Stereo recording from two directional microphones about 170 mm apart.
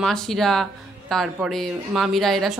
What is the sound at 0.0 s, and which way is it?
A man's voice, 5° left (ahead or behind).